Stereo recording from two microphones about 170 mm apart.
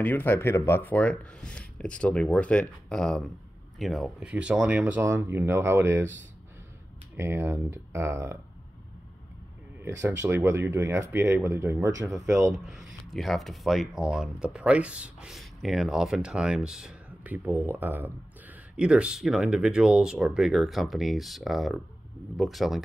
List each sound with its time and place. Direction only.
0.0 s speech: 10° left (ahead or behind); by 6.0 s 15° right (ahead or behind)
7.2 s speech: 15° right (ahead or behind)
9.8 s speech: 15° right (ahead or behind)
12.5 s speech: centre (ahead or behind)